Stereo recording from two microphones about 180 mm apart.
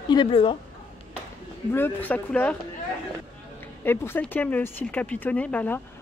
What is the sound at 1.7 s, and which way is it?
Speech, 10° left (ahead or behind).